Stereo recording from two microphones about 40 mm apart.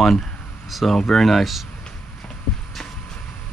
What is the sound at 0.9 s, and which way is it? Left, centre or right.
Speech, centre.